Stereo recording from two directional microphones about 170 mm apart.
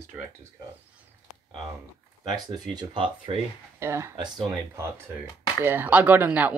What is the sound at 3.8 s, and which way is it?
Speech, 15° right (ahead or behind).